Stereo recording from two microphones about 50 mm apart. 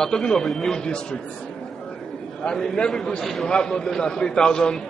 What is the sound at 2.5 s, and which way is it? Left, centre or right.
A man's voice, centre.